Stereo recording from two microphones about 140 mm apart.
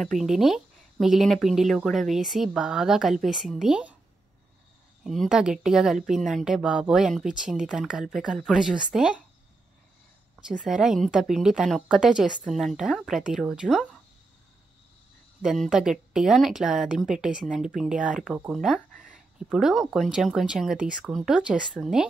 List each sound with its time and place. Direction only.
0.0 s speech: centre (ahead or behind)
5.0 s speech: centre (ahead or behind)
10.6 s speech: 5° right (ahead or behind)
15.4 s speech: centre (ahead or behind)
18.9 s a sound: 70° right (ahead or behind)
19.3 s speech: 5° right (ahead or behind)